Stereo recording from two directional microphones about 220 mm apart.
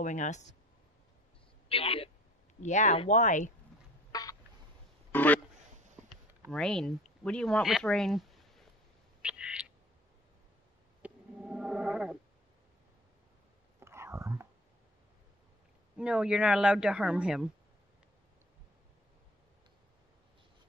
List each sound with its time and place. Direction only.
0.0 s speech: 35° left (ahead or behind)
1.7 s speech: 25° left (ahead or behind)
4.1 s a sound: 15° left (ahead or behind)
6.5 s speech: 5° left (ahead or behind)
9.2 s owl: 5° right (ahead or behind)
11.0 s a sound: 5° right (ahead or behind)
13.7 s whispering: 10° right (ahead or behind)
16.0 s a woman's voice: 5° right (ahead or behind)